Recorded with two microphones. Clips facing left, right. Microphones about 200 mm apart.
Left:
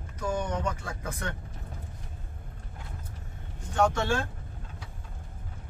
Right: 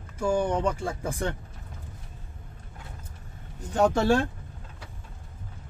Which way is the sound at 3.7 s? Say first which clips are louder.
Right 3 dB; 35° right (ahead or behind).